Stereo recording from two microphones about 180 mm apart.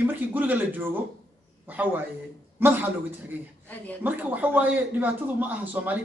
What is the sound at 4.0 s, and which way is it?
A man's voice, 10° right (ahead or behind).